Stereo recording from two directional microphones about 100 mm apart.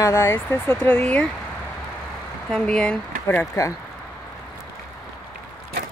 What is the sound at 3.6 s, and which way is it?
Speech, 35° left (ahead or behind).